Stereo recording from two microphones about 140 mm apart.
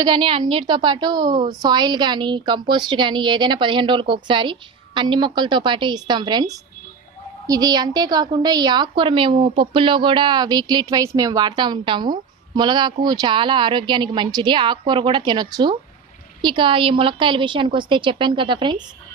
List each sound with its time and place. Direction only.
0.0 s a woman's voice: 35° right (ahead or behind)